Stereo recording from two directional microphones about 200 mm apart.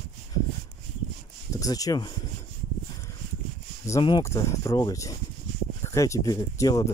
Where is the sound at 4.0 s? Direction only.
20° left (ahead or behind).